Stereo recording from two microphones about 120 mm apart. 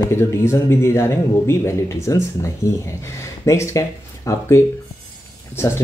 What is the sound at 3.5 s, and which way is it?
Speech, 25° left (ahead or behind).